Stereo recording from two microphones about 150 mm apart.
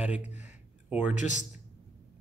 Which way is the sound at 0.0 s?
10° right (ahead or behind).